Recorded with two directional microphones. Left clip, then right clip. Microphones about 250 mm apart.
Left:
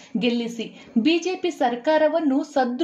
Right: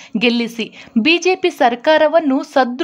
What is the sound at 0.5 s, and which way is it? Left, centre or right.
Speech, right.